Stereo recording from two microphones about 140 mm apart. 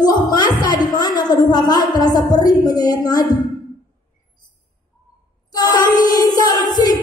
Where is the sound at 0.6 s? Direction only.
30° left (ahead or behind).